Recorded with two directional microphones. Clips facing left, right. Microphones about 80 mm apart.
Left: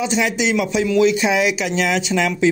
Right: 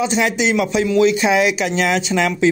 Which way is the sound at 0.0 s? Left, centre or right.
Right.